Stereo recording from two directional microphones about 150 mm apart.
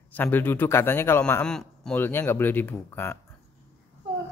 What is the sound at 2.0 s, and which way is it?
A man's voice, 15° left (ahead or behind).